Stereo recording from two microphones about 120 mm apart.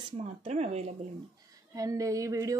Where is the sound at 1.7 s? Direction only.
30° right (ahead or behind).